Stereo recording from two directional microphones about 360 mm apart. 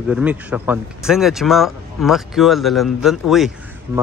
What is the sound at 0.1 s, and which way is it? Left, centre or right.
Speech, centre.